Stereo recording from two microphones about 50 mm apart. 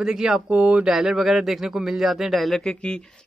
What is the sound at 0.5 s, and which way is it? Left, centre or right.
Speech, right.